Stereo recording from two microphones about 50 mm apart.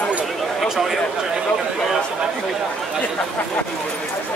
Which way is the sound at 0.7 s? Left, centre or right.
Centre.